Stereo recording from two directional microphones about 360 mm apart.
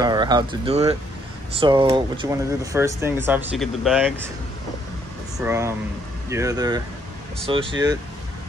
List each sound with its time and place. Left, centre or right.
0.0 s speech: centre
5.4 s speech: centre